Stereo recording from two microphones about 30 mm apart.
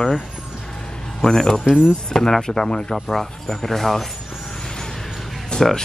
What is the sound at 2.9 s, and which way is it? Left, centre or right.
Speech, centre.